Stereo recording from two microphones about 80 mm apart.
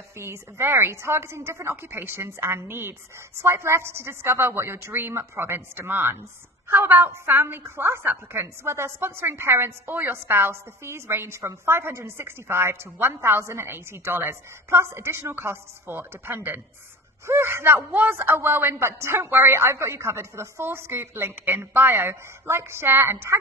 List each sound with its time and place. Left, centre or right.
0.2 s a man's voice: right